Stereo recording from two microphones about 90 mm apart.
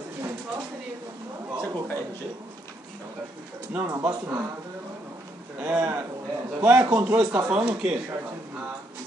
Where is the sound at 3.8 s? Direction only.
35° right (ahead or behind).